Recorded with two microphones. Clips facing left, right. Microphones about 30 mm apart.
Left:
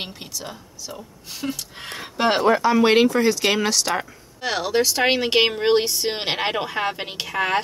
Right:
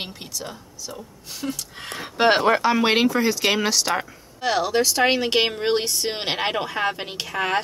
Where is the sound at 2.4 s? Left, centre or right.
Right.